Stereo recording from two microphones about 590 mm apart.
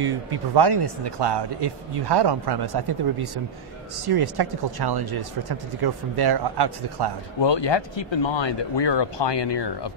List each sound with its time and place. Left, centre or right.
0.0 s speech: right
7.3 s speech: left